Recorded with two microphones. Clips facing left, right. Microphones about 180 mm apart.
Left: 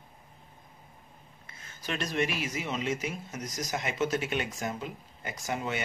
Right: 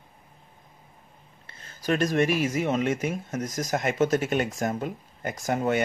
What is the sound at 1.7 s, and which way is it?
Speech, 45° right (ahead or behind).